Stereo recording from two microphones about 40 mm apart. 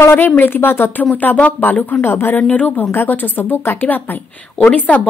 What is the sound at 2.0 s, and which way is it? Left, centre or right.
Speech, left.